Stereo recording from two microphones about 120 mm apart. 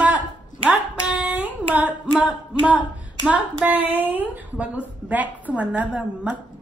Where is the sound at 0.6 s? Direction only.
10° right (ahead or behind).